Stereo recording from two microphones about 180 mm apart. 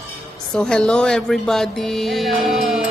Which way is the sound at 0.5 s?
5° left (ahead or behind).